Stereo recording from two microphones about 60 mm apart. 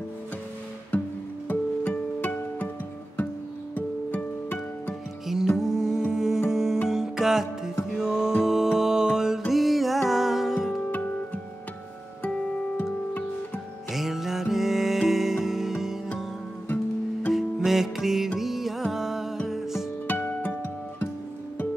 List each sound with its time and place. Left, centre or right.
0.9 s music: left
3.7 s music: left
5.2 s music: centre
13.9 s music: centre
16.6 s music: left
17.3 s music: centre
20.1 s music: left